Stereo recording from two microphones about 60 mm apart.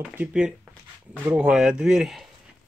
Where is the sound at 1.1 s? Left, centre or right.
Centre.